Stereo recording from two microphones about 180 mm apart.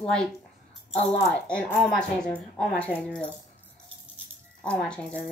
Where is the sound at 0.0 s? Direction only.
5° left (ahead or behind).